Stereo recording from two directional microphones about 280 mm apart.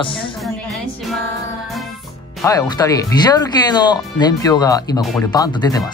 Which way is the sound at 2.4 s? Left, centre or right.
Centre.